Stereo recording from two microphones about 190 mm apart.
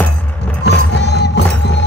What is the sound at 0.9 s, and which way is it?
Music, 65° left (ahead or behind).